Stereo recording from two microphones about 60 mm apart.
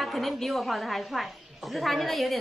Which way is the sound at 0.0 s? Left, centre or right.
Centre.